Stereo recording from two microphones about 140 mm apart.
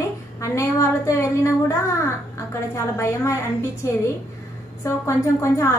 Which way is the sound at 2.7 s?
20° left (ahead or behind).